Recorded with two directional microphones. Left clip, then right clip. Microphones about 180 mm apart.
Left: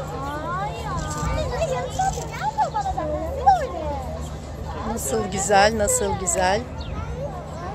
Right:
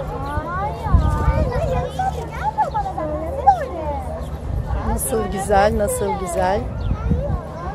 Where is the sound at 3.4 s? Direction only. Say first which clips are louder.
Right 2 dB; 40° left (ahead or behind).